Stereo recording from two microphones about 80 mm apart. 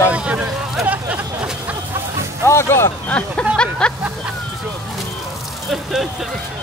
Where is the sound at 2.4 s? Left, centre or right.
Left.